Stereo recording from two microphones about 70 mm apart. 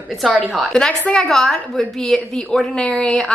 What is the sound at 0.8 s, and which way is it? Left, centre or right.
A woman's voice, centre.